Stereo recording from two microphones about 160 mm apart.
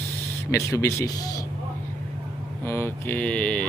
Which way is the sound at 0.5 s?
20° left (ahead or behind).